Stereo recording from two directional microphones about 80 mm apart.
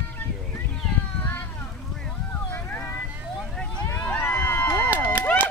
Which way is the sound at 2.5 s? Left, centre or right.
Left.